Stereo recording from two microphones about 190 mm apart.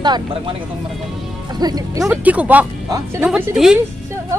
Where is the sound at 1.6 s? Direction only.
20° right (ahead or behind).